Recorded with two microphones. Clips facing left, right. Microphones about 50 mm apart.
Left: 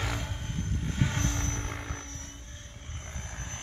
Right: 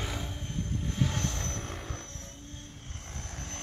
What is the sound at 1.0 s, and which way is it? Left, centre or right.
Vehicle, left.